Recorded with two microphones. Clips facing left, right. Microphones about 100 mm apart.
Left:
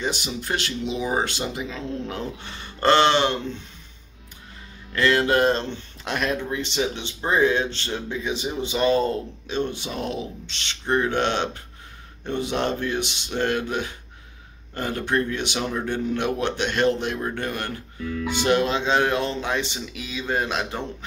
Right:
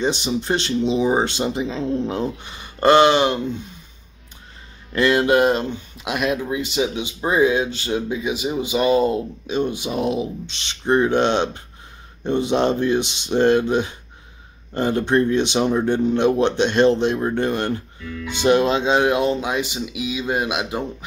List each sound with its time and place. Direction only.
0.0 s speech: 25° right (ahead or behind)
4.9 s speech: 15° right (ahead or behind)